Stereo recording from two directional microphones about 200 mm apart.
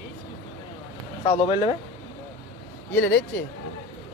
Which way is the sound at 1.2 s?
30° left (ahead or behind).